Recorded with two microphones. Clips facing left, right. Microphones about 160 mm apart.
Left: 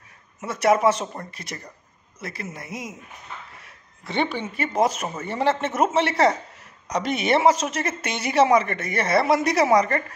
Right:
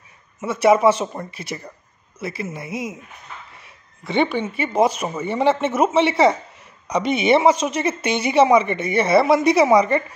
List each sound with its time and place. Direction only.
0.4 s speech: centre (ahead or behind)
4.0 s speech: centre (ahead or behind)